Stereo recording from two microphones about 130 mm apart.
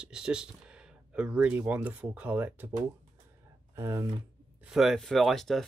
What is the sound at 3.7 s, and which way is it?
Speech, 20° right (ahead or behind).